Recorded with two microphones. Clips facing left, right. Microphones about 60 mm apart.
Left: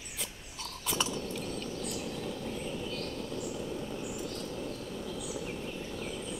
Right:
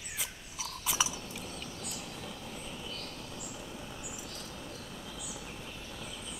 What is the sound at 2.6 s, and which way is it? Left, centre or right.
Vehicle, left.